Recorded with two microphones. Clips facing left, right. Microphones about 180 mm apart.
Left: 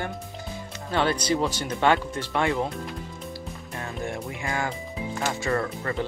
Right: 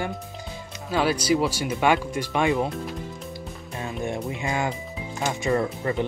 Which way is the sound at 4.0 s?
20° right (ahead or behind).